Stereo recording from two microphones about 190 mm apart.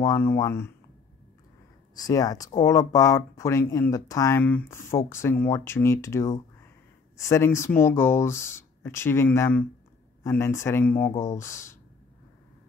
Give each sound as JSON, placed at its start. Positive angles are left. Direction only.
{"t": 0.0, "sound": "speech", "side_deg": 15}
{"t": 2.0, "sound": "speech", "side_deg": 20}